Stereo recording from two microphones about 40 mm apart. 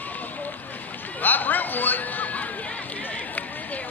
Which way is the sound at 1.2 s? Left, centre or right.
Left.